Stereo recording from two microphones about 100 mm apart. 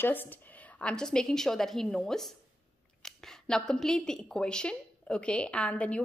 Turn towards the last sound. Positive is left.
turn(degrees=10)  # may be behind; listen again after turning